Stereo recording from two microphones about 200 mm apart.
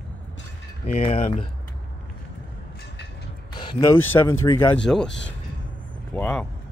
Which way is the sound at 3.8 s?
15° left (ahead or behind).